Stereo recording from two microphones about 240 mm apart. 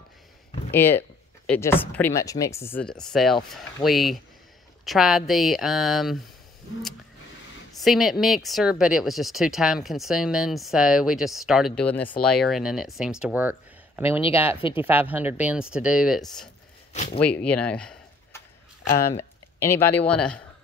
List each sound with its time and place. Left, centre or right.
0.7 s speech: centre
7.7 s speech: centre
16.9 s speech: left
17.2 s speech: centre